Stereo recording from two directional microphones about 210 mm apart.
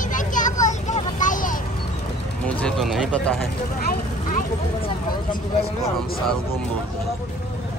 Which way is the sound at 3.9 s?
40° left (ahead or behind).